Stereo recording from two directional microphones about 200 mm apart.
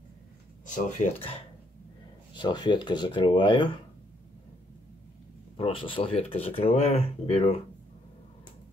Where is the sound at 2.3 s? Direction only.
20° left (ahead or behind).